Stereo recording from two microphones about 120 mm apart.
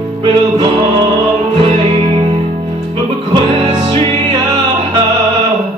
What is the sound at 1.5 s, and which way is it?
Music, 50° right (ahead or behind).